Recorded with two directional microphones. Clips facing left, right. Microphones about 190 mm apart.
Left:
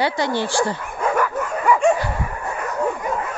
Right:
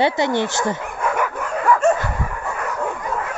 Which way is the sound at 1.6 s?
5° left (ahead or behind).